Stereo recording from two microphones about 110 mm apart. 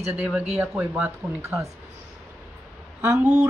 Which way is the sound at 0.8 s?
20° right (ahead or behind).